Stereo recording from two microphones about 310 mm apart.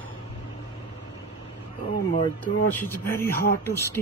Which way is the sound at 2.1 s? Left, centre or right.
Left.